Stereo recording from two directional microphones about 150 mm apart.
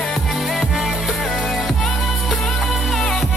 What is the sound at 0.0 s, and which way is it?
Music, centre (ahead or behind).